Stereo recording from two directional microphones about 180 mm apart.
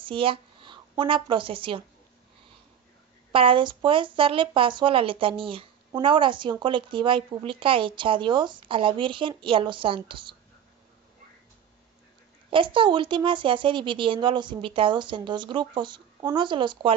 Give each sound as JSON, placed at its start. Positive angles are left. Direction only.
{"t": 0.0, "sound": "a woman's voice", "side_deg": -30}
{"t": 3.3, "sound": "speech", "side_deg": -30}
{"t": 12.4, "sound": "speech", "side_deg": -30}